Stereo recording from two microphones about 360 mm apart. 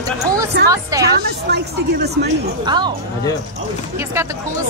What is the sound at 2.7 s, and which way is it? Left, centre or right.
Speech, centre.